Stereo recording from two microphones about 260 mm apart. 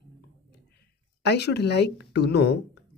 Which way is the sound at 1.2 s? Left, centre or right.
Left.